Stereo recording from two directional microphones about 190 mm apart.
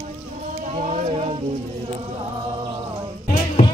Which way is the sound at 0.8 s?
40° right (ahead or behind).